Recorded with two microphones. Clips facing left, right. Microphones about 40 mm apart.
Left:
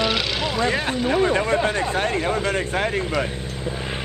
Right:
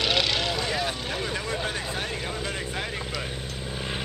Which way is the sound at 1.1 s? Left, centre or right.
Left.